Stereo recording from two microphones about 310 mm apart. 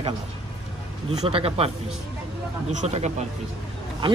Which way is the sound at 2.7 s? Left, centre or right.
Right.